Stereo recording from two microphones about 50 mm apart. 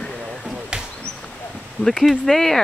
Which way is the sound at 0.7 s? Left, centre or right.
Centre.